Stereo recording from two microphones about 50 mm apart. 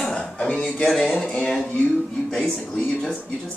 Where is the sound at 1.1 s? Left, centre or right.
Left.